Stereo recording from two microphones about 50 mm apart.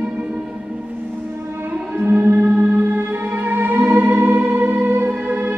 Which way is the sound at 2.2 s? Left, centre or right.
Right.